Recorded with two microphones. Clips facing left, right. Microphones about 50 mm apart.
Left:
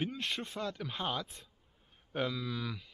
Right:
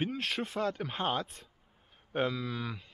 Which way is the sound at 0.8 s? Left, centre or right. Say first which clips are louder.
Right 4 dB; right.